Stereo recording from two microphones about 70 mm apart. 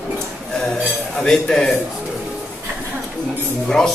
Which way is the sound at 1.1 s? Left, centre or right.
Centre.